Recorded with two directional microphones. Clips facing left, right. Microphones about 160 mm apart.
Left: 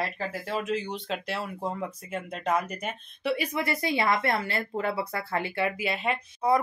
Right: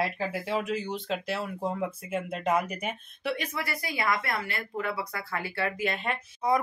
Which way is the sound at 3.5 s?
25° left (ahead or behind).